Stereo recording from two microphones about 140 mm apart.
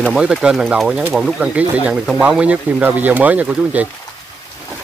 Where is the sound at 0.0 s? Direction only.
5° right (ahead or behind).